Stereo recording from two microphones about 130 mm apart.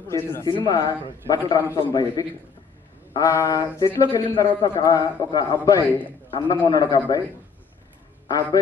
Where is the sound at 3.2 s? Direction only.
25° left (ahead or behind).